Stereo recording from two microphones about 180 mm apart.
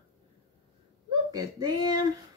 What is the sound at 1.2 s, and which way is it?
Speech, 20° right (ahead or behind).